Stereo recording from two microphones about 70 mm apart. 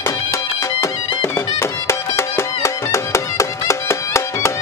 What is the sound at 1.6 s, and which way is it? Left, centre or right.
Music, left.